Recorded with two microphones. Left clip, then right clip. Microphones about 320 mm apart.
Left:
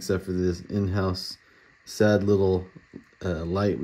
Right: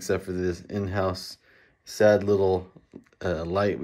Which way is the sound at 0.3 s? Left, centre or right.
Centre.